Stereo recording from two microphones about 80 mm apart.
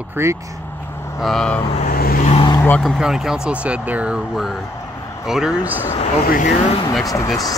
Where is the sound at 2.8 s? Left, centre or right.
Centre.